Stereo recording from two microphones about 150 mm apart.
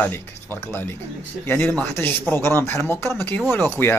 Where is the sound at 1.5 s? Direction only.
10° left (ahead or behind).